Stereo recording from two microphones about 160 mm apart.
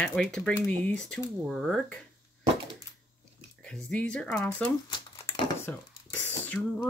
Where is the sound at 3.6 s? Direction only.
5° left (ahead or behind).